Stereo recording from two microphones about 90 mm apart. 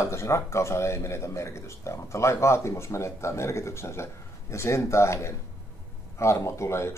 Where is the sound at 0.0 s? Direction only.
30° left (ahead or behind).